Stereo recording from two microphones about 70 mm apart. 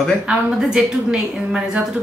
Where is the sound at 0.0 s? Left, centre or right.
Centre.